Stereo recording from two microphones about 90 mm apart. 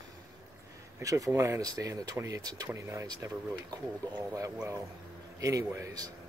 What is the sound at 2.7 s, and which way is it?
Speech, 35° right (ahead or behind).